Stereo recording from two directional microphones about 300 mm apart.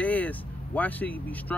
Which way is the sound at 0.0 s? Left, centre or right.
Centre.